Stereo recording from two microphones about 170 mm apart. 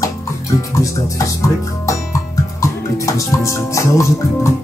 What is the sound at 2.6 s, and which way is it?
Music, 20° left (ahead or behind).